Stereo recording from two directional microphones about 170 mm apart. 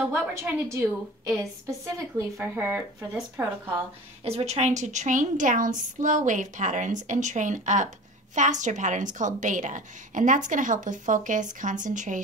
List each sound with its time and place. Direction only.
0.0 s speech: 15° right (ahead or behind)
4.2 s a woman's voice: 40° right (ahead or behind)